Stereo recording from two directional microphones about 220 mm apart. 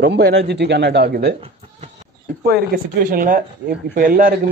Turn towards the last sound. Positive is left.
turn(degrees=-40)  # may be behind; listen again after turning